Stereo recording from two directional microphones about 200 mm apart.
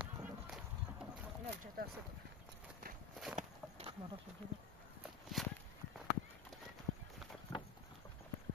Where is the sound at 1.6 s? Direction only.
45° right (ahead or behind).